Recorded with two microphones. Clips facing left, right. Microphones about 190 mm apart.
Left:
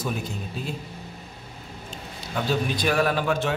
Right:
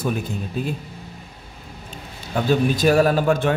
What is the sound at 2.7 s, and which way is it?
Speech, 40° right (ahead or behind).